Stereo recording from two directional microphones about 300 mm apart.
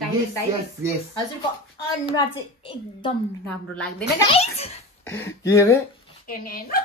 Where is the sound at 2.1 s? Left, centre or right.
Centre.